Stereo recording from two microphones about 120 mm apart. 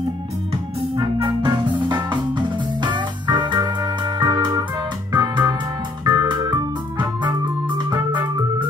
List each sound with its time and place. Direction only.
1.4 s music: 40° right (ahead or behind)
6.0 s organ: 35° right (ahead or behind)